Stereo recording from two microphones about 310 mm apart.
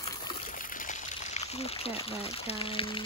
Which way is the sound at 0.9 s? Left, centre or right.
Left.